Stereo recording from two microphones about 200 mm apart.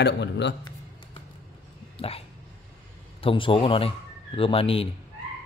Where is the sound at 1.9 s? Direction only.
30° left (ahead or behind).